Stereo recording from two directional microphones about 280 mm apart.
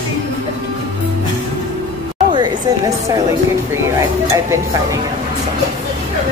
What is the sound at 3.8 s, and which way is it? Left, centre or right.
Speech, centre.